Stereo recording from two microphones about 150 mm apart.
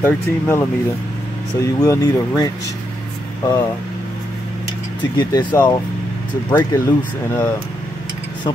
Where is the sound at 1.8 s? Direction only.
25° left (ahead or behind).